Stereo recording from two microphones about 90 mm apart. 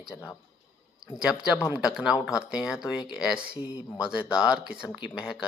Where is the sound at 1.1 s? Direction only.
10° right (ahead or behind).